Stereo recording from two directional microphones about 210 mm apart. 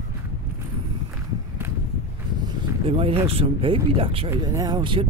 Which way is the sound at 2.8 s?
30° right (ahead or behind).